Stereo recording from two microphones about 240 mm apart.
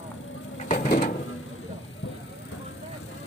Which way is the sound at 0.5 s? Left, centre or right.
Left.